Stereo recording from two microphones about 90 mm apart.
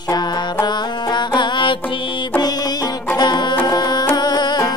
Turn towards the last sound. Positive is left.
turn(degrees=50)  # may be behind; listen again after turning